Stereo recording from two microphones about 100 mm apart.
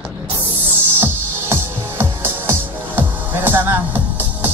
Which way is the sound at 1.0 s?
20° right (ahead or behind).